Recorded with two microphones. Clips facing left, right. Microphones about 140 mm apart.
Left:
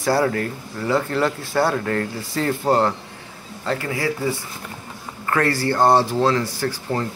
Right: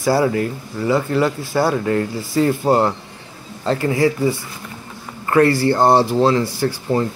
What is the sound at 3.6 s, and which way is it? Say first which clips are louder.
Speech: right 7 dB; 25° right (ahead or behind).